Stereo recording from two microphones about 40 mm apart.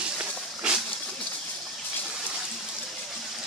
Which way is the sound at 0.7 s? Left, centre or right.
Right.